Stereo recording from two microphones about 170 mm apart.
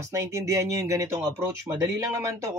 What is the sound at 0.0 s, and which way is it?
Speech, 15° right (ahead or behind).